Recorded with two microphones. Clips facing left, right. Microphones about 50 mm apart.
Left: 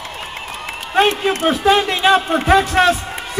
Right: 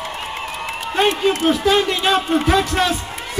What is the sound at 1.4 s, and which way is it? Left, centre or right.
A man's voice, centre.